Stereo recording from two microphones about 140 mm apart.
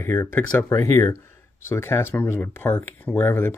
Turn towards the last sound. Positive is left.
turn(degrees=15)  # may be behind; listen again after turning